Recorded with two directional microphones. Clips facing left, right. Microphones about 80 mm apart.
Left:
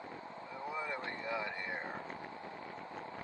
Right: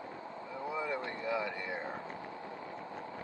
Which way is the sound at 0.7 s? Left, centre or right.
Centre.